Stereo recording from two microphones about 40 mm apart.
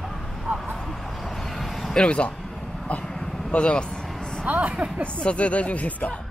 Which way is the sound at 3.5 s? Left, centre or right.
Left.